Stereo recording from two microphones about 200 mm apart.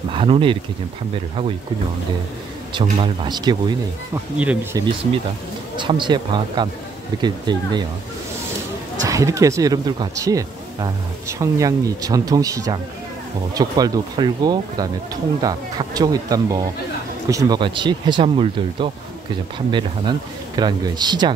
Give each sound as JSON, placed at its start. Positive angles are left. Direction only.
{"t": 0.1, "sound": "speech", "side_deg": -25}
{"t": 2.7, "sound": "speech", "side_deg": -25}
{"t": 4.4, "sound": "speech", "side_deg": -5}
{"t": 5.8, "sound": "speech", "side_deg": -25}
{"t": 9.0, "sound": "speech", "side_deg": -15}